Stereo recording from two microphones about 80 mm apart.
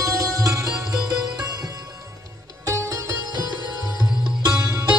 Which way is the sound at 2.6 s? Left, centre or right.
Right.